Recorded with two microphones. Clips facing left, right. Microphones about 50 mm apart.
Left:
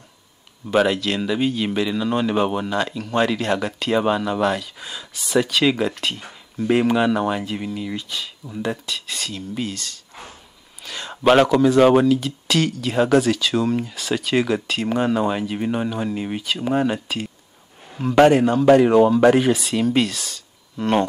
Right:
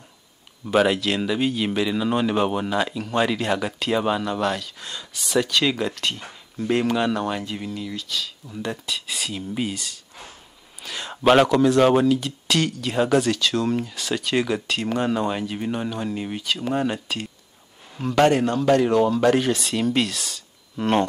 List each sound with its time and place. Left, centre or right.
0.7 s speech: centre
7.9 s speech: left
8.8 s a man's voice: centre